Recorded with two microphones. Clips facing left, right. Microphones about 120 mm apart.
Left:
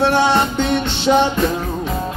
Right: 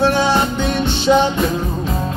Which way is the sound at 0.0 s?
65° left (ahead or behind).